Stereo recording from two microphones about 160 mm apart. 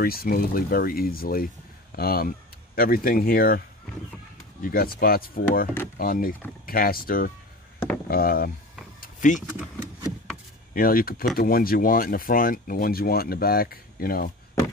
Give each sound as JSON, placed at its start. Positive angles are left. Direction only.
{"t": 0.0, "sound": "speech", "side_deg": 70}
{"t": 9.0, "sound": "a sound", "side_deg": 50}
{"t": 10.7, "sound": "speech", "side_deg": 65}